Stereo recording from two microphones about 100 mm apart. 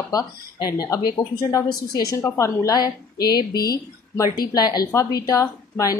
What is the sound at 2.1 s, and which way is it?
A woman's voice, 30° left (ahead or behind).